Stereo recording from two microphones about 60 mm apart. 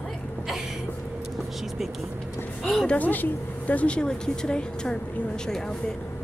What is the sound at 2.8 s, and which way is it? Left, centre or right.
Speech, left.